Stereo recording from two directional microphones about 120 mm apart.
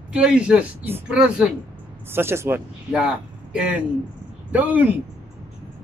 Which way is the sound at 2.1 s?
20° right (ahead or behind).